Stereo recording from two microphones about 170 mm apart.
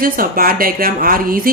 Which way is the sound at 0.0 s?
60° right (ahead or behind).